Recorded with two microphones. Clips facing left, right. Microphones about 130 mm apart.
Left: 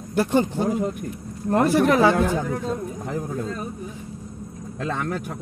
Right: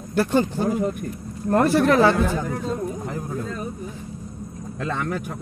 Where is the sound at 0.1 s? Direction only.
20° left (ahead or behind).